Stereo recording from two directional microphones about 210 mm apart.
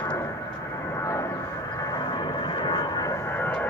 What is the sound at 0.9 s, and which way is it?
Music, 15° left (ahead or behind).